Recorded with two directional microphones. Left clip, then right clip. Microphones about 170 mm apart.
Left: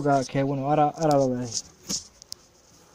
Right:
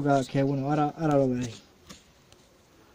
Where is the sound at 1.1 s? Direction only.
20° right (ahead or behind).